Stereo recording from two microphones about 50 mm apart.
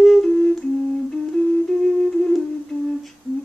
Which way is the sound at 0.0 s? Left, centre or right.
Centre.